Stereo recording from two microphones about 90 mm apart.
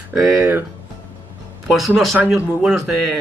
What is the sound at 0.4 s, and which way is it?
Music, 25° right (ahead or behind).